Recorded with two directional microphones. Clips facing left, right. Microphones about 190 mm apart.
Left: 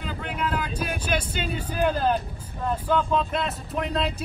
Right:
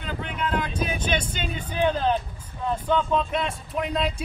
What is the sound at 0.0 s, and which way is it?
Vehicle, 5° left (ahead or behind).